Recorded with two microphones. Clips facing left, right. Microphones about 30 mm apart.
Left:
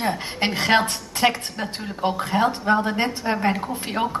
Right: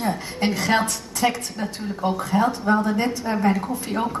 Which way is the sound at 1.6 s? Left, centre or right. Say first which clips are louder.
Right 2 dB; left.